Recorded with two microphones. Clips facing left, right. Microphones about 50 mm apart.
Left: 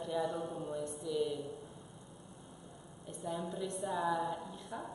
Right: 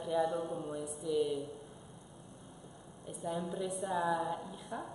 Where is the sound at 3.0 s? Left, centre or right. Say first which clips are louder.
Right 2 dB; centre.